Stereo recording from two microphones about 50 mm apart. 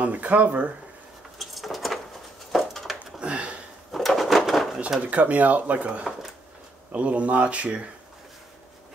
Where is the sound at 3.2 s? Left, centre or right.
Right.